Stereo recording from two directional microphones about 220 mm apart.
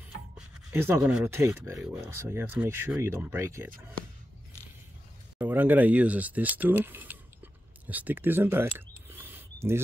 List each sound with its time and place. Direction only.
0.7 s speech: 10° right (ahead or behind)
5.4 s speech: 10° right (ahead or behind)
7.8 s a sound: 5° right (ahead or behind)